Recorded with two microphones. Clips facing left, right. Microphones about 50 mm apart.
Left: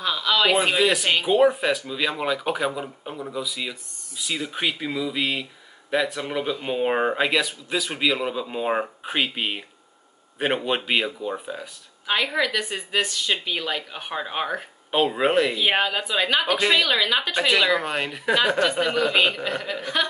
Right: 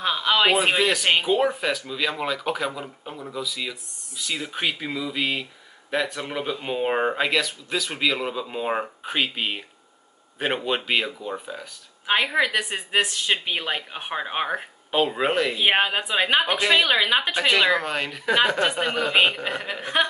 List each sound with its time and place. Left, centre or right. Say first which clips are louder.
0.0 s a woman's voice: right 1 dB; right
1.2 s speech: left 3 dB; centre
4.4 s speech: left 1 dB; centre
12.1 s a woman's voice: right 2 dB; right
14.9 s speech: left 1 dB; centre
15.5 s a woman's voice: right 1 dB; right
17.8 s speech: left 1 dB; centre
18.6 s a woman's voice: left 1 dB; right
18.9 s speech: left 2 dB; centre
19.1 s a woman's voice: right 1 dB; right